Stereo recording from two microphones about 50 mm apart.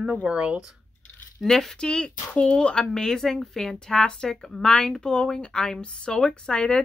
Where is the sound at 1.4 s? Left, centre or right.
Centre.